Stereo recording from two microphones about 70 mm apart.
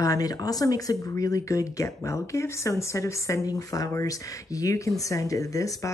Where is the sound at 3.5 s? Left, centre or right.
Left.